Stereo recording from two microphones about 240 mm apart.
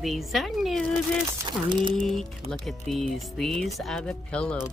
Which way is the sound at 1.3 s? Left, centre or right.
Centre.